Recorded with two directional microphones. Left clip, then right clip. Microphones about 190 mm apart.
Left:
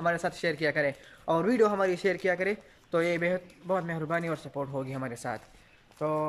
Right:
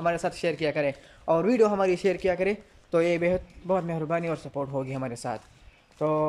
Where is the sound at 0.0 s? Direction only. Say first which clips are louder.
Right 2 dB; 5° right (ahead or behind).